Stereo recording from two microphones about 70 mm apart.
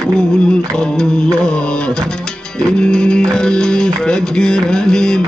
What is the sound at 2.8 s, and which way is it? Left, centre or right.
Music, centre.